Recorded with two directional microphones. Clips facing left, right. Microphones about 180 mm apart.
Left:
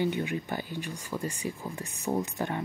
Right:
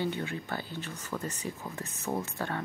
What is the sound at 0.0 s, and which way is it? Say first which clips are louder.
Speech: left 4 dB; 15° left (ahead or behind).